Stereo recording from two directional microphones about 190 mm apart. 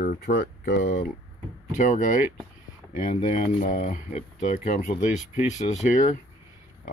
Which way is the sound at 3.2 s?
40° left (ahead or behind).